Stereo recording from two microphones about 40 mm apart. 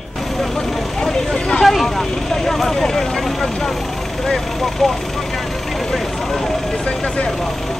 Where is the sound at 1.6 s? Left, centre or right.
Centre.